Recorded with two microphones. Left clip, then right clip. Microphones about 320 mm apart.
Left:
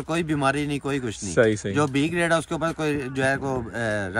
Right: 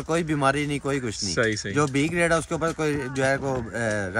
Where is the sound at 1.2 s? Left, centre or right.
Centre.